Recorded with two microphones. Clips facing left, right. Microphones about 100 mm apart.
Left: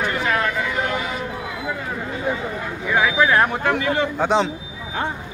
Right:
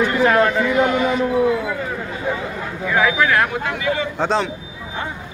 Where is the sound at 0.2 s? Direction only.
40° right (ahead or behind).